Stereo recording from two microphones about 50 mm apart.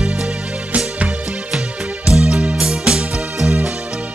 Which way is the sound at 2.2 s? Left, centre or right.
Right.